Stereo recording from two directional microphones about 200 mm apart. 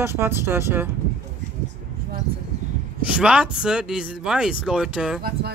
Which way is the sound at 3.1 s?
5° right (ahead or behind).